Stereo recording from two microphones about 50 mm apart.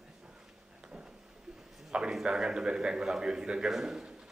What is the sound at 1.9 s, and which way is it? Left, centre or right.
A man's voice, centre.